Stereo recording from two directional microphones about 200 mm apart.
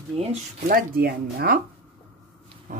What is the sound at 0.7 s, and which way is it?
Speech, 45° right (ahead or behind).